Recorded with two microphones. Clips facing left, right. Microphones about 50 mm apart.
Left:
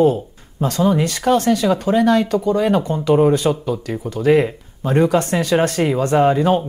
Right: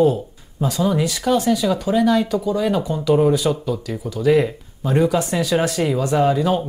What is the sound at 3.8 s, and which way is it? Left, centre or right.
Speech, left.